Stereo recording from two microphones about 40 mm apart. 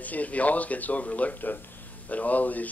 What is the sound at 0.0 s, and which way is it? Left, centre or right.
Speech, left.